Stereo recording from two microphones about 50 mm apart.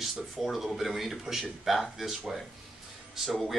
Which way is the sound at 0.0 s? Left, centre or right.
Centre.